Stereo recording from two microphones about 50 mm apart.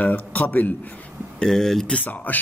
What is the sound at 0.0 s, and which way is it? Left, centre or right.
Speech, left.